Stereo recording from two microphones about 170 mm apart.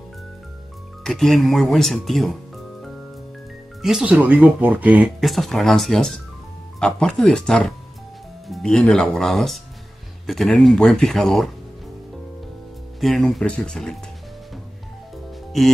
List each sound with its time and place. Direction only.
1.0 s speech: centre (ahead or behind)
13.0 s speech: centre (ahead or behind)
15.5 s speech: centre (ahead or behind)